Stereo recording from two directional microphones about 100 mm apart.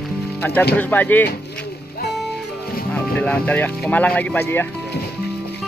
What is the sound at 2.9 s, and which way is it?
Speech, 15° left (ahead or behind).